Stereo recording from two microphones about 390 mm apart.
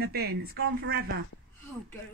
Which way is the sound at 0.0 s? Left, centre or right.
Right.